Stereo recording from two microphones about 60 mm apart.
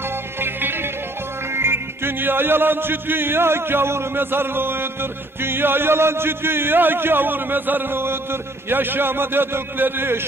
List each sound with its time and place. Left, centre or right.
0.1 s music: right